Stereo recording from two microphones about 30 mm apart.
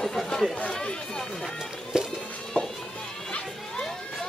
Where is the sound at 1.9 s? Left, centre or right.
Right.